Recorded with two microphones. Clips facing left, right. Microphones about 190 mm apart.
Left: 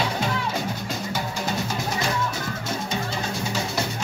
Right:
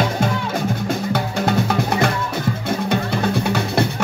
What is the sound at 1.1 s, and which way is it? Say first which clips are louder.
Drum: right 8 dB; 60° right (ahead or behind).